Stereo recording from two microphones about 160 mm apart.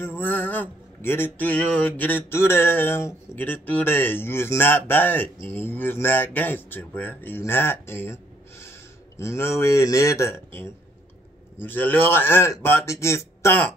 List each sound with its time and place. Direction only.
0.0 s speech: 10° left (ahead or behind)